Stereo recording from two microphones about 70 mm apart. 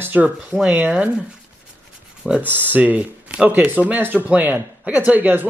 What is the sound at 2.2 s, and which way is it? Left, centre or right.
Speech, centre.